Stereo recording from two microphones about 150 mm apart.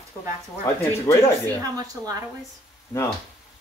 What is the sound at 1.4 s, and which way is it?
Speech, 25° right (ahead or behind).